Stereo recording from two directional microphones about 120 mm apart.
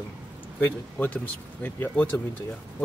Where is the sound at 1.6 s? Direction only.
15° left (ahead or behind).